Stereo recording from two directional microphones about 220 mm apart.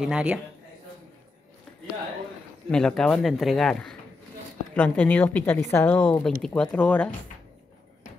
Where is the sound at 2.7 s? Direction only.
5° left (ahead or behind).